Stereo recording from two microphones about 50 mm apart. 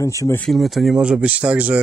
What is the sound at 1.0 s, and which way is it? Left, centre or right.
Speech, right.